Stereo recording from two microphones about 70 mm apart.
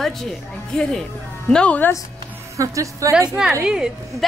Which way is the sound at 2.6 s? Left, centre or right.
Right.